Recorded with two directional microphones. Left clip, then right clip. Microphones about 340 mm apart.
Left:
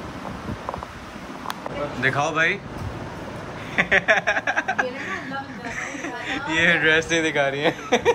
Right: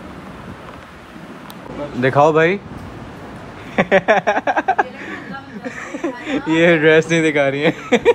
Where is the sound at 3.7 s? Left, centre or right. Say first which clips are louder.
Right 5 dB; centre.